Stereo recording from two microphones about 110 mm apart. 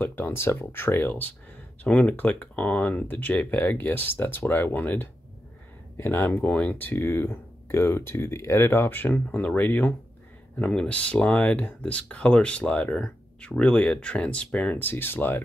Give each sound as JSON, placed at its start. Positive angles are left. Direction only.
{"t": 0.0, "sound": "speech", "side_deg": 20}